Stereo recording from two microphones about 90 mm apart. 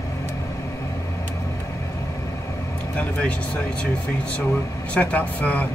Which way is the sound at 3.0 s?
15° left (ahead or behind).